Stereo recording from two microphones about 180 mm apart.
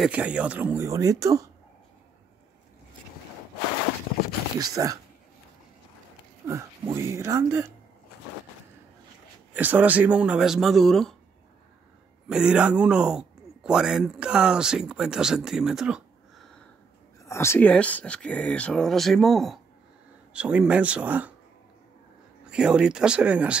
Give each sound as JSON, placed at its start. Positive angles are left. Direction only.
{"t": 0.0, "sound": "speech", "side_deg": -5}
{"t": 4.6, "sound": "speech", "side_deg": -20}
{"t": 6.4, "sound": "speech", "side_deg": -15}
{"t": 9.5, "sound": "a man's voice", "side_deg": -10}
{"t": 12.3, "sound": "a man's voice", "side_deg": -5}
{"t": 17.2, "sound": "speech", "side_deg": 15}
{"t": 22.5, "sound": "a man's voice", "side_deg": -5}